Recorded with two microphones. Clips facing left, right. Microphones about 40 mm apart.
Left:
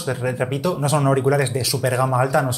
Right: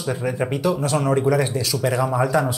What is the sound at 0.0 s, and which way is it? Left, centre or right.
Speech, centre.